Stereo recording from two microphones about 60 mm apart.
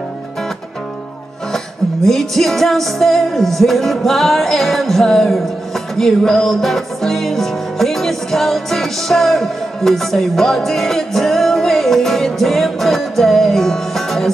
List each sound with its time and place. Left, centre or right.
2.0 s music: centre